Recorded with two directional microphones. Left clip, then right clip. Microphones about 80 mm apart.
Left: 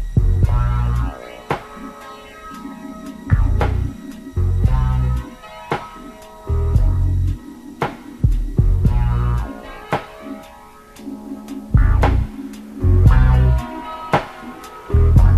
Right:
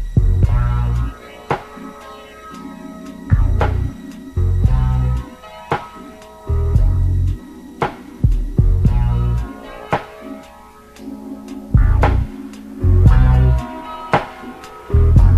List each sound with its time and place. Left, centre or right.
0.4 s music: left
3.1 s music: left
11.4 s music: left